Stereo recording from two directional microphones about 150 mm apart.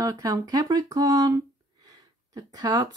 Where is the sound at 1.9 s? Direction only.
25° right (ahead or behind).